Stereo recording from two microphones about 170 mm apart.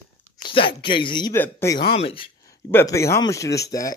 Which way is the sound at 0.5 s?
30° left (ahead or behind).